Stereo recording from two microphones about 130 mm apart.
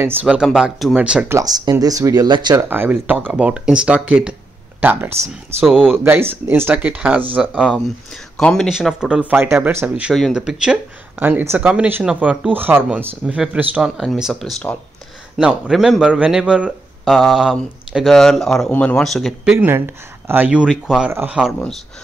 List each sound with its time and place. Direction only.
0.0 s speech: 15° right (ahead or behind)
1.3 s speech: 30° right (ahead or behind)
2.5 s speech: 15° right (ahead or behind)
5.6 s speech: centre (ahead or behind)
6.0 s speech: 15° right (ahead or behind)
7.5 s speech: centre (ahead or behind)
8.6 s speech: 5° right (ahead or behind)
10.1 s speech: centre (ahead or behind)
19.5 s speech: 15° right (ahead or behind)
21.1 s speech: 15° right (ahead or behind)